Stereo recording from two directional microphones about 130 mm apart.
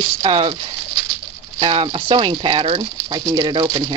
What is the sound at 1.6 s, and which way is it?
Speech, 40° right (ahead or behind).